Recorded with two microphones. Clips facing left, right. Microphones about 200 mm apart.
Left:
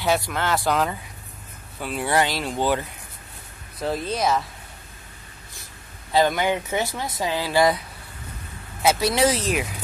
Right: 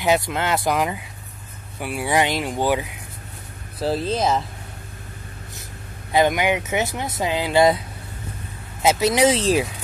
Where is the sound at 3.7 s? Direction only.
30° right (ahead or behind).